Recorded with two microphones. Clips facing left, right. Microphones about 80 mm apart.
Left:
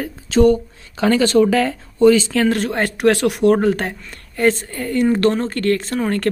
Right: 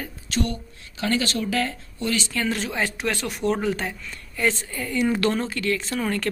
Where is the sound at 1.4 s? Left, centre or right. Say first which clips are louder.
Left 15 dB; left.